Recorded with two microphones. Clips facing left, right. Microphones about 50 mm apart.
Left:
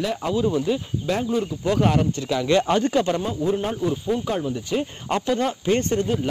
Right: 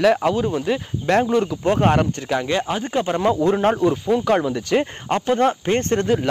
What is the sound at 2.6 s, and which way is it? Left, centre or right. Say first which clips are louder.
Speech: left 4 dB; centre.